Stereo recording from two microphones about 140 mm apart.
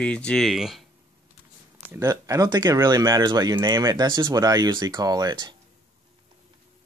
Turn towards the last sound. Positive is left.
turn(degrees=-30)  # may be behind; listen again after turning